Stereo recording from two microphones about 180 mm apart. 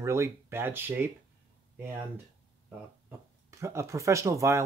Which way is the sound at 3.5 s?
15° right (ahead or behind).